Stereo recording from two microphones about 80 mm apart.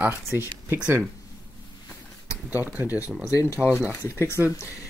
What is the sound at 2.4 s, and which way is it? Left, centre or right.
Speech, right.